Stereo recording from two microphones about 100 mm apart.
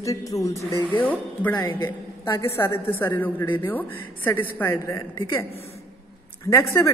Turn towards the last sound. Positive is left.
turn(degrees=25)  # may be behind; listen again after turning